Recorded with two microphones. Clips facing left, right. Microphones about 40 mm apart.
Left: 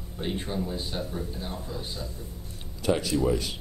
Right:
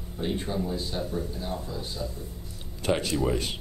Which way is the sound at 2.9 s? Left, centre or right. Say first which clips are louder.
Left 1 dB; right.